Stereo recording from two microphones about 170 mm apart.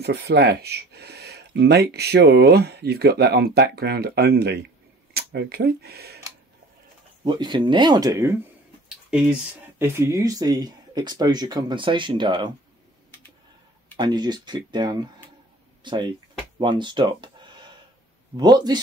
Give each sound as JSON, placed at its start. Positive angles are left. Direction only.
{"t": 0.0, "sound": "speech", "side_deg": -75}
{"t": 7.2, "sound": "speech", "side_deg": -25}
{"t": 8.8, "sound": "speech", "side_deg": -5}
{"t": 13.9, "sound": "speech", "side_deg": -25}
{"t": 18.3, "sound": "speech", "side_deg": -25}